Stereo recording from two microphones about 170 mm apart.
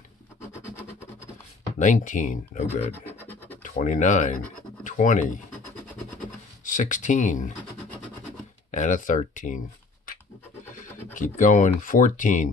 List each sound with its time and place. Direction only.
1.8 s speech: 50° left (ahead or behind)
3.1 s scratch: 10° left (ahead or behind)
3.6 s speech: 50° left (ahead or behind)
6.6 s speech: 50° left (ahead or behind)
8.7 s speech: 50° left (ahead or behind)
11.1 s speech: 50° left (ahead or behind)